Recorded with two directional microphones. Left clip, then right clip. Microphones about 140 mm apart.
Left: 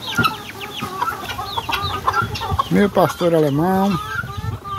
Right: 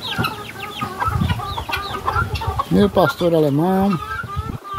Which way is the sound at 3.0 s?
15° right (ahead or behind).